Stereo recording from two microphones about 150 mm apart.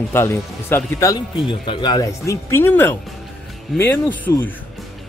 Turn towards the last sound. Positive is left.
turn(degrees=15)  # may be behind; listen again after turning